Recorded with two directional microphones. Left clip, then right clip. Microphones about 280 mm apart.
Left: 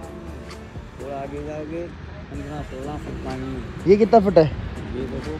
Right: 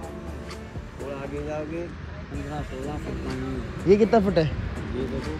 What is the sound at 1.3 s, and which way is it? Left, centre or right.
Speech, centre.